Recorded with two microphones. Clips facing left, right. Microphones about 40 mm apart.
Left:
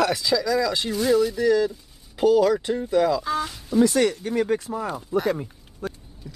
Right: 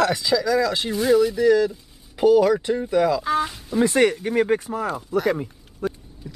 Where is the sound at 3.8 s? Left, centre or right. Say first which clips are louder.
Right 2 dB; right.